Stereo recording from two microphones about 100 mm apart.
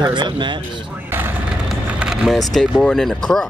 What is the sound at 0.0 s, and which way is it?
Speech, 45° right (ahead or behind).